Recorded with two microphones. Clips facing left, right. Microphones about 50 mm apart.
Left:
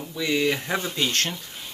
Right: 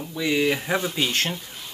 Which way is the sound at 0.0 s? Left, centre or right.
Centre.